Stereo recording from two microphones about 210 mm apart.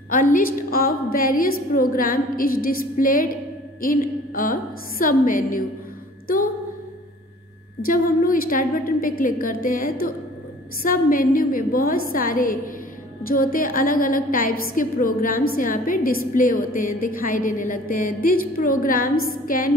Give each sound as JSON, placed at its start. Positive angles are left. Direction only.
{"t": 0.1, "sound": "a woman's voice", "side_deg": 40}
{"t": 7.8, "sound": "a woman's voice", "side_deg": 40}